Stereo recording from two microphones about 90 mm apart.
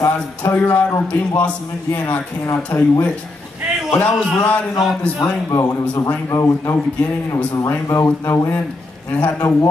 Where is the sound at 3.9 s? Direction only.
20° left (ahead or behind).